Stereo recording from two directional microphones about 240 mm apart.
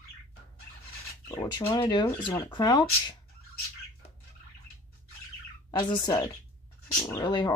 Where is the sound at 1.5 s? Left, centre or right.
Centre.